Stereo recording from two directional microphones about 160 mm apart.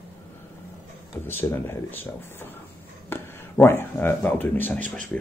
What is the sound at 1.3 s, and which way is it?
Speech, 15° left (ahead or behind).